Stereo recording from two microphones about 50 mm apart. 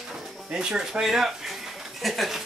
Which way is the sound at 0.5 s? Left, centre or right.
Centre.